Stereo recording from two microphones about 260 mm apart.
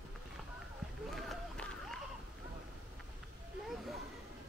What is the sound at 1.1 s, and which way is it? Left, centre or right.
Run, centre.